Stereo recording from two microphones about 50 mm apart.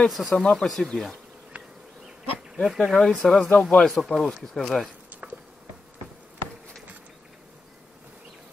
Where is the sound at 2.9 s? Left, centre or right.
Centre.